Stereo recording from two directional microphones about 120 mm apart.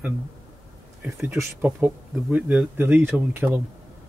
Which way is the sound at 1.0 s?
15° right (ahead or behind).